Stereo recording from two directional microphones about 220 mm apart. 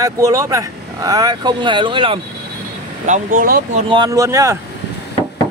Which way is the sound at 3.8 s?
20° right (ahead or behind).